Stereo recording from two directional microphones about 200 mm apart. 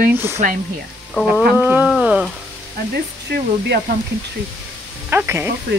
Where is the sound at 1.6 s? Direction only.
5° right (ahead or behind).